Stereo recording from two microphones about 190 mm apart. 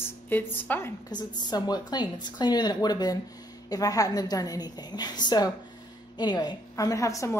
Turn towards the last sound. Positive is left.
turn(degrees=15)  # may be behind; listen again after turning